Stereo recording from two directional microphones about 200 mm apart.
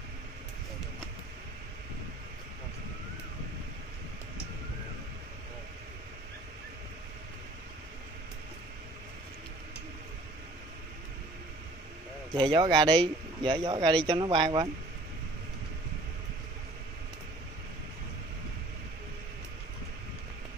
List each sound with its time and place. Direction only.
12.3 s speech: 20° right (ahead or behind)